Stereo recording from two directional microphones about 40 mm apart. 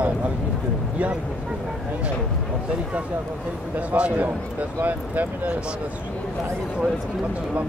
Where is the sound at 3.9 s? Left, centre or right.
Right.